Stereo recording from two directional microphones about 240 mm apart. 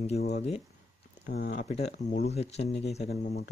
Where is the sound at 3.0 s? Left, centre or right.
Left.